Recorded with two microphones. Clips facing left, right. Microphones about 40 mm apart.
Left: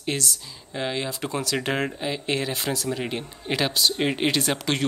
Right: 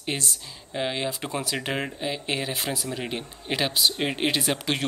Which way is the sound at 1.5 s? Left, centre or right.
Centre.